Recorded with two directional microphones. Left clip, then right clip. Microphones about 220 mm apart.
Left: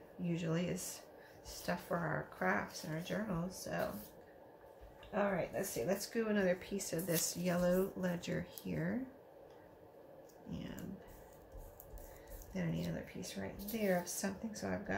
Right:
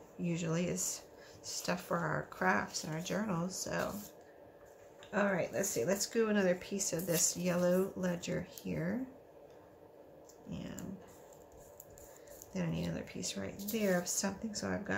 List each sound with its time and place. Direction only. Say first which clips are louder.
0.2 s speech: right 2 dB; 15° right (ahead or behind)
5.1 s speech: right 3 dB; 25° right (ahead or behind); by 8.9 s 10° right (ahead or behind)
12.5 s speech: right 3 dB; 15° right (ahead or behind)